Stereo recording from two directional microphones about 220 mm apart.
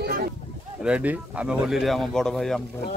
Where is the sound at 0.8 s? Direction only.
5° right (ahead or behind).